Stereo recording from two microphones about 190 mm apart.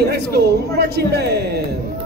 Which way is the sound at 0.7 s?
60° right (ahead or behind).